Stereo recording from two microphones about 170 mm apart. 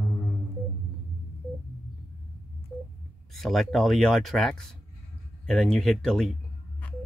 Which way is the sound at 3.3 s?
Centre (ahead or behind).